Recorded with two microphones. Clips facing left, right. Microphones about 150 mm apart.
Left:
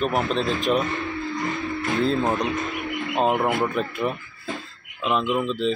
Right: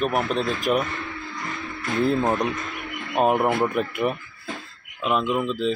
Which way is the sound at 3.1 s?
Centre (ahead or behind).